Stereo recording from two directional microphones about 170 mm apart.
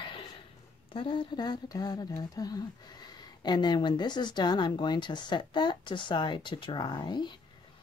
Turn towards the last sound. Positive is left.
turn(degrees=25)  # may be behind; listen again after turning